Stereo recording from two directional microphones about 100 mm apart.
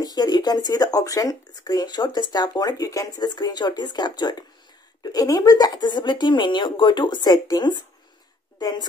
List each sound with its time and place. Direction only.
0.0 s speech: 45° left (ahead or behind)